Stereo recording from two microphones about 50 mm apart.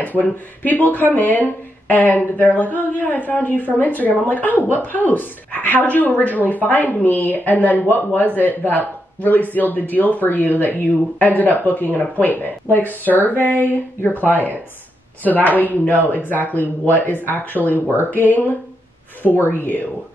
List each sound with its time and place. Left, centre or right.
0.2 s speech: left
19.2 s speech: centre